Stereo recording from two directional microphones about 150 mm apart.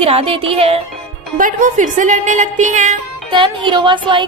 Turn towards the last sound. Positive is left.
turn(degrees=-30)  # may be behind; listen again after turning